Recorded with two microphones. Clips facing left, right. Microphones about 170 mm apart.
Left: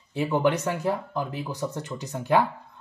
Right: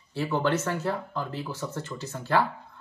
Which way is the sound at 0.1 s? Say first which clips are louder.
Left 3 dB; 15° left (ahead or behind).